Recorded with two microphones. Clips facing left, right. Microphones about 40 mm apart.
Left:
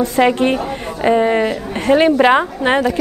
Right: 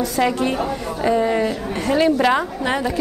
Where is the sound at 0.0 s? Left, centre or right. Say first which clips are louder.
Left 5 dB; left.